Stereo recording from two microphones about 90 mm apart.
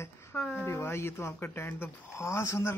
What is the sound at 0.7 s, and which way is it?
Speech, 25° left (ahead or behind).